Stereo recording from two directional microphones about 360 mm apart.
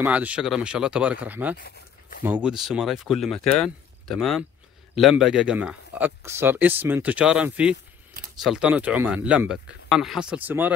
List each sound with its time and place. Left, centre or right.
0.0 s speech: centre
1.6 s a sound: left
2.2 s speech: centre